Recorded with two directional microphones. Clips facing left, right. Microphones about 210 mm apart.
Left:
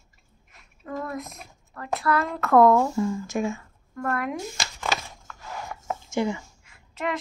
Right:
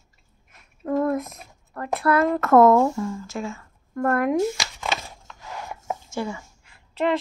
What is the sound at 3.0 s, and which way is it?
Speech, 15° left (ahead or behind).